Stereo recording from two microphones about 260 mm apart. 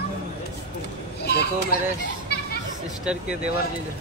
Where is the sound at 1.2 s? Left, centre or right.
Left.